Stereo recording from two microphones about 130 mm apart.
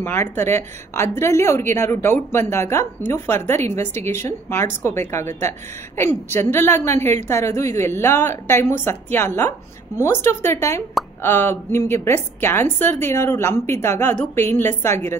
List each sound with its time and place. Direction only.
0.0 s a woman's voice: 20° left (ahead or behind)